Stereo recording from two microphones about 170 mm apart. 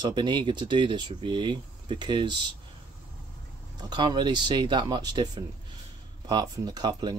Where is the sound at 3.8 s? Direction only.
25° right (ahead or behind).